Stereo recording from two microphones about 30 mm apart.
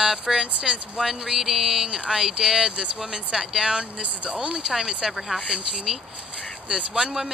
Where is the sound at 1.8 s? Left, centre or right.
Right.